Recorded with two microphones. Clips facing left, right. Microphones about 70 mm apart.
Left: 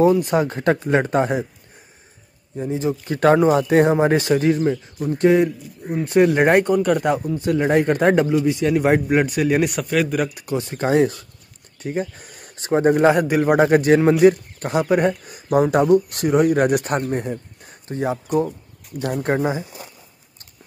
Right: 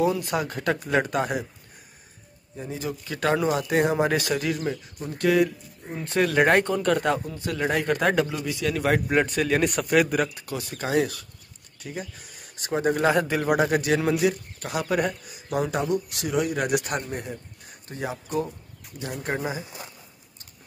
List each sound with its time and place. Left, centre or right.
0.0 s speech: left
2.7 s speech: left
3.2 s speech: left
5.9 s speech: centre
9.1 s speech: centre
9.8 s speech: centre
10.4 s speech: left
11.8 s speech: left
13.7 s speech: left
14.8 s speech: left
15.2 s speech: left